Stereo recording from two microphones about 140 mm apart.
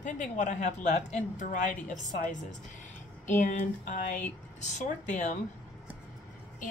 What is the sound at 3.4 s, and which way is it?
A woman's voice, 65° left (ahead or behind).